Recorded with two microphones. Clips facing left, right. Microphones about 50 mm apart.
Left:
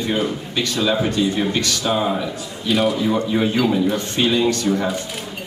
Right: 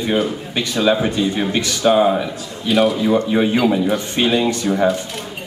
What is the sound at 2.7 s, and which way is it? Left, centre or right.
Speech, centre.